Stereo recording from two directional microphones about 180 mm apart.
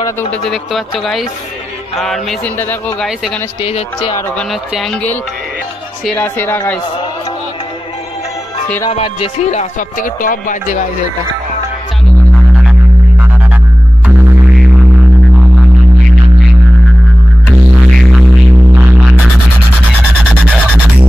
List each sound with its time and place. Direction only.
0.5 s speech: centre (ahead or behind)
3.6 s speech: 35° left (ahead or behind)
4.4 s speech: centre (ahead or behind)
8.9 s speech: 35° left (ahead or behind)